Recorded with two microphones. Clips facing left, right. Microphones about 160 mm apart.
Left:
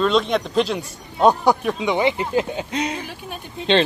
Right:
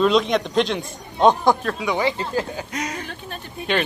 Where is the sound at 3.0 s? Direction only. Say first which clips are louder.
Left 1 dB; 10° left (ahead or behind).